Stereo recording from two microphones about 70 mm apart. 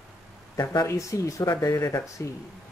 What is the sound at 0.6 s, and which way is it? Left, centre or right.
Speech, left.